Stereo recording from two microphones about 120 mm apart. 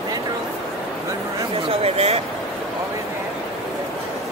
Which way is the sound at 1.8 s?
60° right (ahead or behind).